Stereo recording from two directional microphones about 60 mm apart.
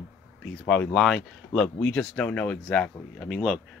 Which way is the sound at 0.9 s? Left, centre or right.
Centre.